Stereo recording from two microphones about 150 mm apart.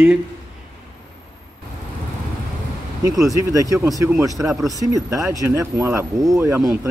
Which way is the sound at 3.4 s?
20° right (ahead or behind).